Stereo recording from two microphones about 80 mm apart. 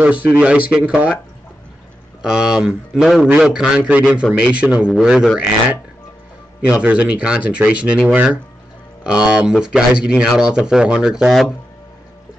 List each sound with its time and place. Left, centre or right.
0.0 s speech: centre
2.2 s a man's voice: centre
6.7 s speech: centre